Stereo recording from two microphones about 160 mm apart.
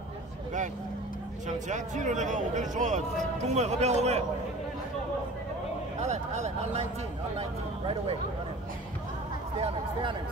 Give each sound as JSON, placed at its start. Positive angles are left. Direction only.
{"t": 1.7, "sound": "speech", "side_deg": -50}
{"t": 5.9, "sound": "speech", "side_deg": -45}